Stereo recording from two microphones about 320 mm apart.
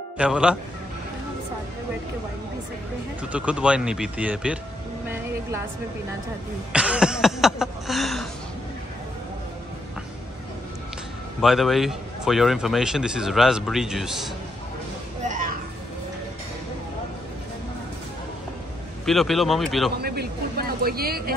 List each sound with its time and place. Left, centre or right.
0.2 s a man's voice: centre
3.2 s a man's voice: centre
6.7 s a sound: centre
11.4 s a man's voice: centre
15.2 s a sound: right
19.0 s a man's voice: centre
20.0 s speech: right